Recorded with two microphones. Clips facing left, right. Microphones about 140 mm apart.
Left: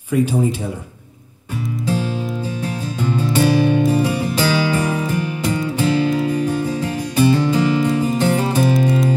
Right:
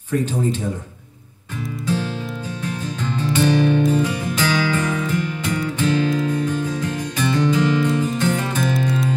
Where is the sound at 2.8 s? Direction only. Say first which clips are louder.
Left 5 dB; 10° left (ahead or behind).